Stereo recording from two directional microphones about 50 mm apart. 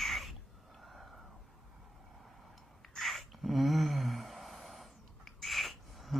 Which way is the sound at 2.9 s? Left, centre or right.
Centre.